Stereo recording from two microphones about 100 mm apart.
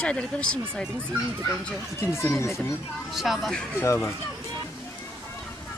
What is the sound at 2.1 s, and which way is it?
Speech, 25° left (ahead or behind).